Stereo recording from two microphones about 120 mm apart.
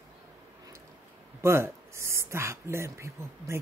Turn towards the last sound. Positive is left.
turn(degrees=-25)  # may be behind; listen again after turning